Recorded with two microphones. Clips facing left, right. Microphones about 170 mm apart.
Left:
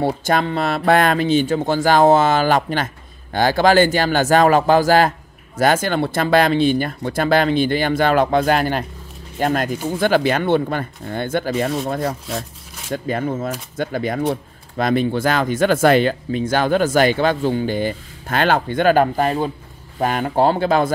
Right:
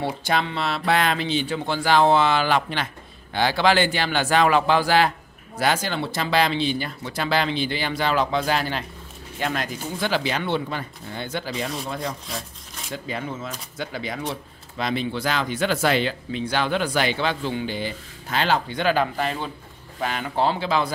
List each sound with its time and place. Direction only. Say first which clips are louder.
0.0 s speech: left 6 dB; 45° left (ahead or behind)
12.9 s speech: left 9 dB; 50° left (ahead or behind)